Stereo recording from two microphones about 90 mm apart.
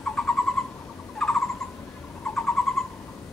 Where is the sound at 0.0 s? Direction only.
10° left (ahead or behind).